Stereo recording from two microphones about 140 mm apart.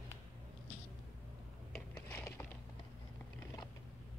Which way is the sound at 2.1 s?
20° left (ahead or behind).